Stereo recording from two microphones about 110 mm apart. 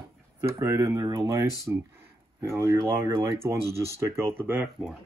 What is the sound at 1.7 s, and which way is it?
Speech, 15° right (ahead or behind).